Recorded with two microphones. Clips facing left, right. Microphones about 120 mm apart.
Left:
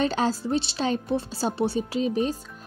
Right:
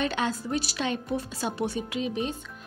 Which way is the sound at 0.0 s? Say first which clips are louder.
Left 4 dB; 35° left (ahead or behind).